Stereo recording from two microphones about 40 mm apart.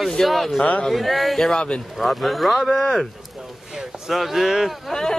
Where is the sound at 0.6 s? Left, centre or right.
Left.